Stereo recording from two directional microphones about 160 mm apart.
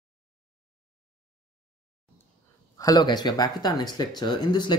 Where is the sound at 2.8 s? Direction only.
25° left (ahead or behind).